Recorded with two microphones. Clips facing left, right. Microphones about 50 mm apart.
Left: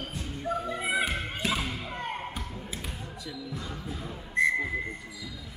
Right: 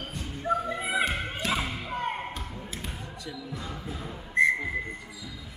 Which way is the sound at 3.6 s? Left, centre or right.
Centre.